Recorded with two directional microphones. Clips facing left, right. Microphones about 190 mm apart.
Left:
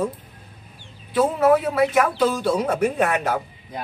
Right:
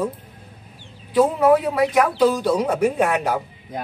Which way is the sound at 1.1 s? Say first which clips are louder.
Right 2 dB; 15° right (ahead or behind).